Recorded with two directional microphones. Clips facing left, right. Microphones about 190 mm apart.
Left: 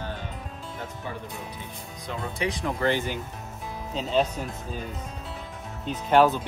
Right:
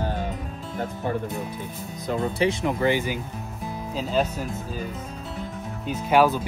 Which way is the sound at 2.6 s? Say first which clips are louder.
Right 3 dB; 10° right (ahead or behind).